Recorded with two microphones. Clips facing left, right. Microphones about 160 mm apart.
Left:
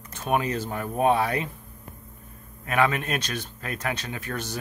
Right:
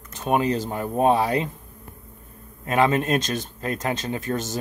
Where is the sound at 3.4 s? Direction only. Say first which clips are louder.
Right 6 dB; 40° right (ahead or behind).